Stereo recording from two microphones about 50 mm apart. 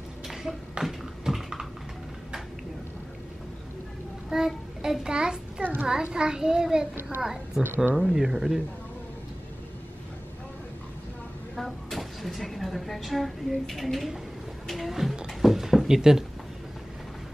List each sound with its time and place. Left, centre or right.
0.3 s a sound: centre
4.3 s child singing: centre
5.0 s a child's voice: centre
5.6 s a sound: right
6.0 s a child's voice: centre
7.6 s speech: right
7.9 s a child's voice: centre
11.5 s a woman's voice: centre
15.1 s a sound: centre